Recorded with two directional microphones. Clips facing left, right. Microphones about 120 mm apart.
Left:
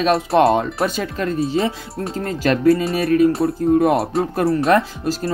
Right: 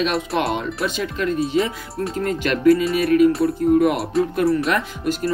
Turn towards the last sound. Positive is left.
turn(degrees=30)  # may be behind; listen again after turning